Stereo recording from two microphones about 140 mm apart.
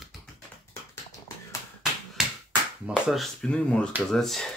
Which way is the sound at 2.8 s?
5° right (ahead or behind).